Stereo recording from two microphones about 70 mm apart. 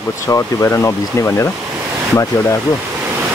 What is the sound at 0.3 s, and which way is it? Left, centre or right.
Speech, left.